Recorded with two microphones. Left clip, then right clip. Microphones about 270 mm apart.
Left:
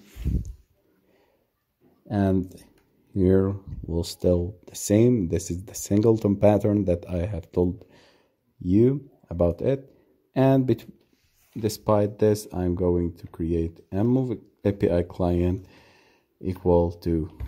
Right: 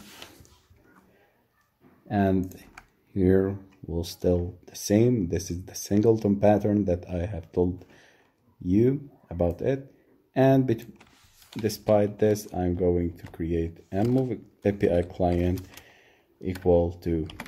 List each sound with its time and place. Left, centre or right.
2.0 s speech: left